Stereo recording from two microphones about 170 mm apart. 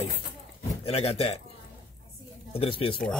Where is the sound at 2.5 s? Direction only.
35° left (ahead or behind).